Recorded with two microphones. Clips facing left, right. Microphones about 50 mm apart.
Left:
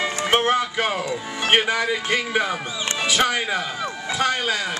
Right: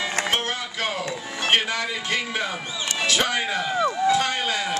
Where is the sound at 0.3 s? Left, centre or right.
Left.